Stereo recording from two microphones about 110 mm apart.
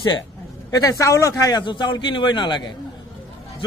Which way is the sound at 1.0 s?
30° left (ahead or behind).